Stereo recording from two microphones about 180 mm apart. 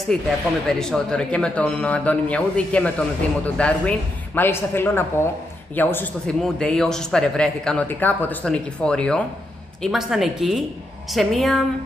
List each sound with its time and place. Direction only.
0.1 s speech: 5° left (ahead or behind)